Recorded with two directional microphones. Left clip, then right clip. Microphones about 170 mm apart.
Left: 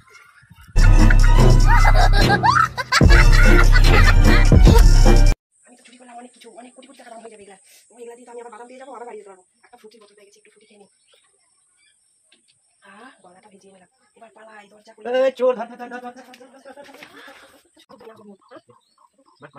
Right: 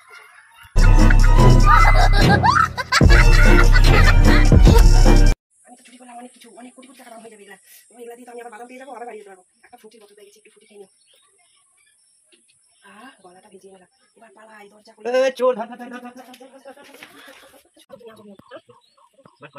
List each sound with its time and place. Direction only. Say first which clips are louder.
0.7 s music: right 1 dB; centre (ahead or behind)
6.0 s speech: right 1 dB; centre (ahead or behind)
15.0 s speech: even; 40° right (ahead or behind)
17.7 s speech: right 1 dB; centre (ahead or behind)